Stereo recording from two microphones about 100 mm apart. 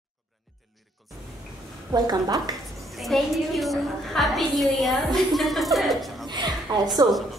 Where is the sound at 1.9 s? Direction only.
40° right (ahead or behind).